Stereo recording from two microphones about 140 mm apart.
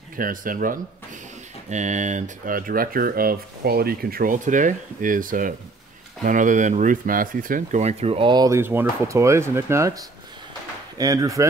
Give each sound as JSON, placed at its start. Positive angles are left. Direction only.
{"t": 0.2, "sound": "speech", "side_deg": -75}
{"t": 1.7, "sound": "speech", "side_deg": -60}
{"t": 7.8, "sound": "speech", "side_deg": -45}
{"t": 8.5, "sound": "speech", "side_deg": -15}